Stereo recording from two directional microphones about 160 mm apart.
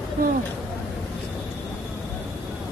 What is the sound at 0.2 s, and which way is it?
Speech, 60° right (ahead or behind).